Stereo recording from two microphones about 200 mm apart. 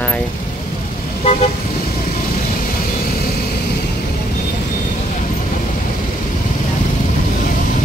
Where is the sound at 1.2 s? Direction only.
30° left (ahead or behind).